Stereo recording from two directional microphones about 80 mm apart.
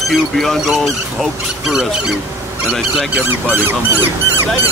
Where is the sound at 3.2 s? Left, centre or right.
Right.